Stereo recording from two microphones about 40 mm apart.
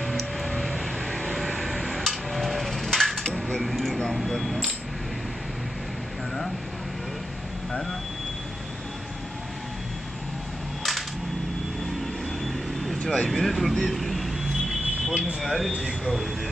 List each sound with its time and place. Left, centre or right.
0.0 s vehicle: centre
3.6 s a sound: centre
10.8 s cap gun: centre
13.0 s vehicle: centre
13.3 s vehicle: centre
15.4 s a sound: centre
15.8 s speech: centre